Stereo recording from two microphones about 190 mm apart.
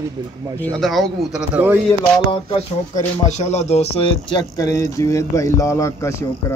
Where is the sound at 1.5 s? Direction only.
10° right (ahead or behind).